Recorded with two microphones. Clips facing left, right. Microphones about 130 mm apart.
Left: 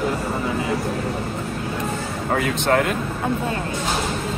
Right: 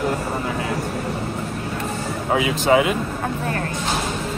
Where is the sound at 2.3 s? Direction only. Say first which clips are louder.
Right 3 dB; 5° right (ahead or behind).